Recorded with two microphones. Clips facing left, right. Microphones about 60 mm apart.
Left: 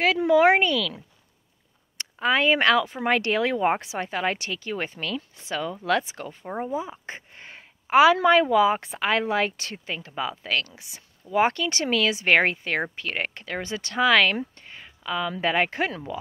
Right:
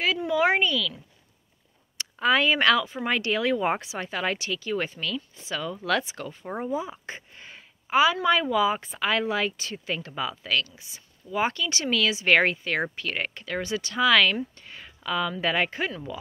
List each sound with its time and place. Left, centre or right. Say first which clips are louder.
0.0 s a woman's voice: left 5 dB; left
2.1 s speech: left 1 dB; left
5.9 s speech: left 2 dB; left
6.4 s speech: left 2 dB; centre
7.1 s a sound: left 1 dB; left
7.9 s a woman's voice: left 5 dB; left
8.3 s speech: left 4 dB; left
9.8 s speech: right 3 dB; centre
10.6 s a woman's voice: even; left
11.2 s speech: left 4 dB; left
14.7 s a sound: right 1 dB; centre
15.3 s speech: left 2 dB; left
15.7 s speech: left 3 dB; left